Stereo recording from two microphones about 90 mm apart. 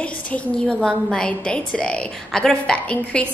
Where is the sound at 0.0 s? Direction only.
15° left (ahead or behind).